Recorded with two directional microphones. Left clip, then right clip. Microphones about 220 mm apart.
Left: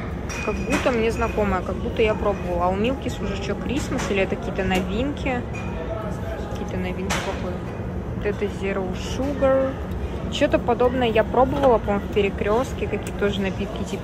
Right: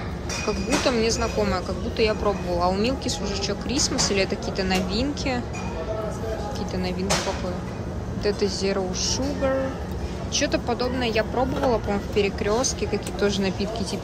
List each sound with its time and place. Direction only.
0.8 s speech: 20° right (ahead or behind)
8.2 s speech: 20° right (ahead or behind)